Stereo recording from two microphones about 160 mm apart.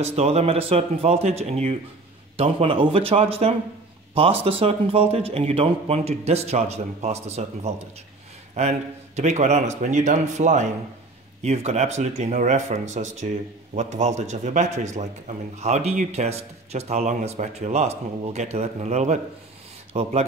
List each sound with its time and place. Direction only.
0.0 s a man's voice: 40° right (ahead or behind)
8.5 s a man's voice: 45° right (ahead or behind)